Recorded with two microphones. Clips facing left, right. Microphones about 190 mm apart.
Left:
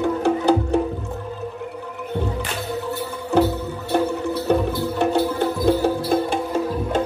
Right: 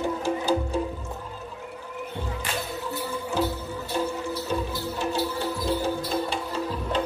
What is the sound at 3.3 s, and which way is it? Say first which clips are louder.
Music: left 10 dB; 65° left (ahead or behind).